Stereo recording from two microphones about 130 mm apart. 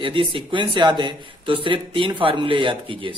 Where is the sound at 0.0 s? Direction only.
40° right (ahead or behind).